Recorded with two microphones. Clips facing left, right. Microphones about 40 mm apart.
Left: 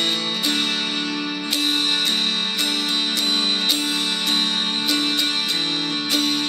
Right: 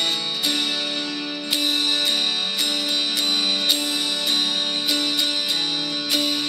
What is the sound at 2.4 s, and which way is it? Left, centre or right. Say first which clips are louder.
Music: left 1 dB; centre.